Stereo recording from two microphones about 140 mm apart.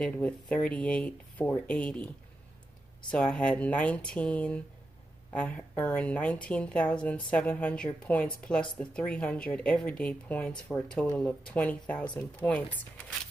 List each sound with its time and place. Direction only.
0.0 s a woman's voice: 10° left (ahead or behind)
3.1 s a woman's voice: 5° left (ahead or behind)